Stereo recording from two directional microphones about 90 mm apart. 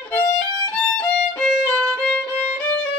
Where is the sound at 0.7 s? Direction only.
10° left (ahead or behind).